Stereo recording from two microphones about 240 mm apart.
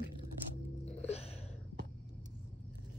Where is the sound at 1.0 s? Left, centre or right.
Left.